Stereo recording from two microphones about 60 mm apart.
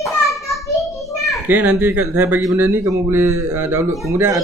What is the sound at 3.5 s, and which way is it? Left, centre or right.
Speech, right.